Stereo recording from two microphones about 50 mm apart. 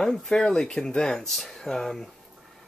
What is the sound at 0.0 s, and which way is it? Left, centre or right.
Speech, centre.